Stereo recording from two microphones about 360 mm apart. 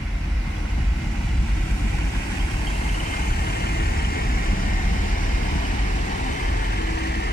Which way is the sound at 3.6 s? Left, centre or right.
Left.